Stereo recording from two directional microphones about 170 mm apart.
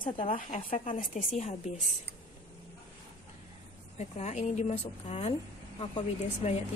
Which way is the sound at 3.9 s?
40° left (ahead or behind).